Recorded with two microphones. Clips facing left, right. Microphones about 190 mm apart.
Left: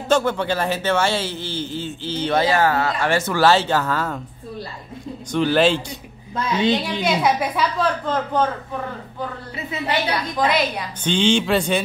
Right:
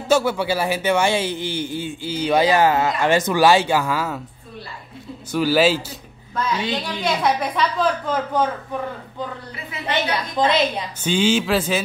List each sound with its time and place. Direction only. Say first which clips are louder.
0.1 s a man's voice: right 1 dB; 10° right (ahead or behind)
5.3 s speech: even; 5° right (ahead or behind)
7.0 s a woman's voice: left 1 dB; 5° left (ahead or behind)
7.8 s a man's voice: even; 10° right (ahead or behind)
9.8 s a woman's voice: even; 25° right (ahead or behind)
11.1 s speech: even; 5° right (ahead or behind)